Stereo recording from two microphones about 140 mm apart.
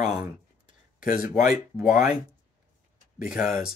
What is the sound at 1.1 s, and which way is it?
Speech, 80° left.